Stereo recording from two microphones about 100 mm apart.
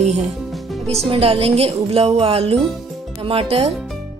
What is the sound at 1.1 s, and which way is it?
Speech, 75° right (ahead or behind).